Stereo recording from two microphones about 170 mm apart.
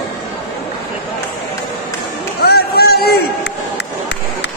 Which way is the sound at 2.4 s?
70° left (ahead or behind).